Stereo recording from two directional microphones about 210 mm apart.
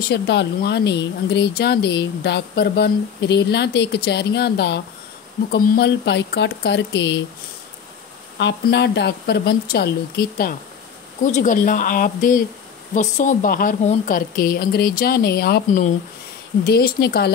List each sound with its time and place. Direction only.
0.1 s speech: 50° left (ahead or behind)
8.4 s speech: 55° left (ahead or behind)